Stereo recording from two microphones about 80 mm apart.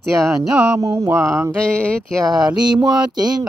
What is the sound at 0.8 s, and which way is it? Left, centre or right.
Speech, right.